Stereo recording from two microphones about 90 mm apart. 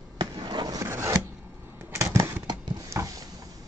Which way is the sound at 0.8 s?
30° right (ahead or behind).